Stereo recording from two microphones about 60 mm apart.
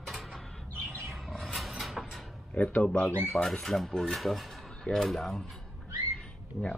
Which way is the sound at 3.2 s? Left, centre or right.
Centre.